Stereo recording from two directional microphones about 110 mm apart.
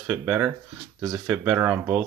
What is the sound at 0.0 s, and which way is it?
Cattle, 15° right (ahead or behind).